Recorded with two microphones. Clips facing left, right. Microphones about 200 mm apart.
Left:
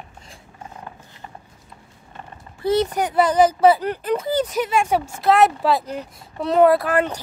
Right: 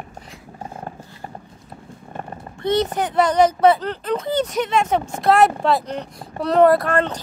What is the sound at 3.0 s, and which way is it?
Speech, 10° left (ahead or behind).